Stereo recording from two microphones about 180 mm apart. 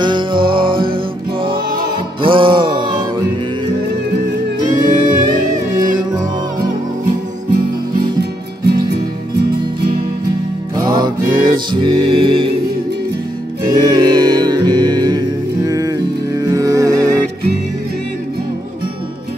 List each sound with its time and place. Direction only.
0.0 s music: 25° right (ahead or behind)
0.4 s music: 55° right (ahead or behind)
0.9 s music: 30° right (ahead or behind)
4.6 s music: 25° right (ahead or behind)
8.2 s music: 65° right (ahead or behind)
10.8 s music: 25° right (ahead or behind)
13.7 s music: 25° right (ahead or behind)